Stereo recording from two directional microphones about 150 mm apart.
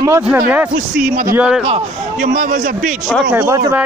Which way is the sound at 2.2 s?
60° right (ahead or behind).